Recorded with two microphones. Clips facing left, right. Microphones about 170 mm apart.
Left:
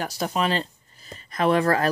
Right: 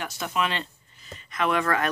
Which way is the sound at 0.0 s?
35° left (ahead or behind).